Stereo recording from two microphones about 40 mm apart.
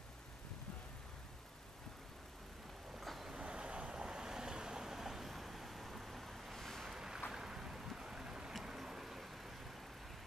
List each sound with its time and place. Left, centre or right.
3.0 s vehicle: centre
3.3 s vehicle: right; by 6.9 s centre
6.9 s boat: centre
7.3 s vehicle: centre